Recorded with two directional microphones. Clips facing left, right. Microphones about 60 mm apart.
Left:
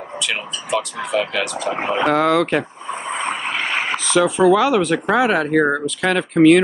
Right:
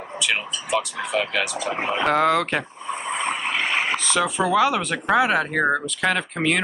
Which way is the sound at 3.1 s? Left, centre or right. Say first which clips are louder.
Left 2 dB; left.